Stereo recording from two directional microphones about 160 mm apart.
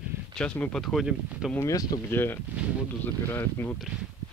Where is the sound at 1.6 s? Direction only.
20° left (ahead or behind).